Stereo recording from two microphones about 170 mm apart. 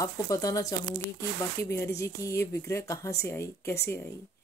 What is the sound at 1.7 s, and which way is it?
Speech, 15° left (ahead or behind).